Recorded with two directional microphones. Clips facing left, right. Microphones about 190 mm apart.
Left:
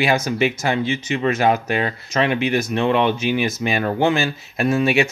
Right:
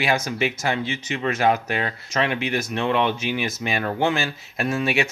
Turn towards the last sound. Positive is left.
turn(degrees=20)  # may be behind; listen again after turning